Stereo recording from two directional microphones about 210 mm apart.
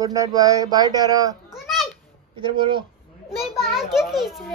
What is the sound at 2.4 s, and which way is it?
Speech, 25° right (ahead or behind).